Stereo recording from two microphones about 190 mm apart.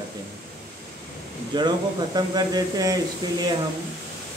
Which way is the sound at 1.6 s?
20° right (ahead or behind).